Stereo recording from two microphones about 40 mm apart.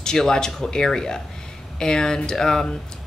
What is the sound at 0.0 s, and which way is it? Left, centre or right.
Speech, centre.